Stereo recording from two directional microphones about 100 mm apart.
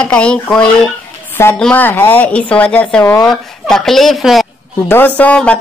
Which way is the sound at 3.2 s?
5° left (ahead or behind).